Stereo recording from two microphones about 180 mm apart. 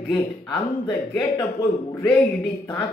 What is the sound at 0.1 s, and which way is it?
A man's voice, 20° left (ahead or behind).